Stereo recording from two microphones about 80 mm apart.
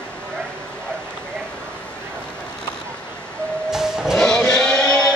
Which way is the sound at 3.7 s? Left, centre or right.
Centre.